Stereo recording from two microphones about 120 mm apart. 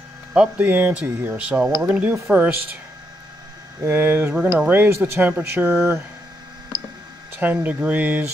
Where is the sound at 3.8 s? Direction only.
20° right (ahead or behind).